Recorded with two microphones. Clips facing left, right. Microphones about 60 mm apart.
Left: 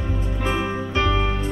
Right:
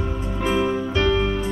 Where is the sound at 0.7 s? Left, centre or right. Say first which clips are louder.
Right 2 dB; left.